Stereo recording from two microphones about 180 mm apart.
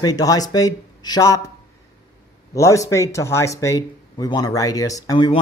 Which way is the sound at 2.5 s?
15° left (ahead or behind).